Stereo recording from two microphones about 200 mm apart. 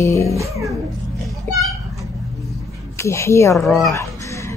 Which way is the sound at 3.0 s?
15° left (ahead or behind).